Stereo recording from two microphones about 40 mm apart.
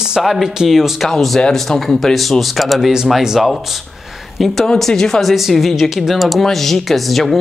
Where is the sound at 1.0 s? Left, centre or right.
Centre.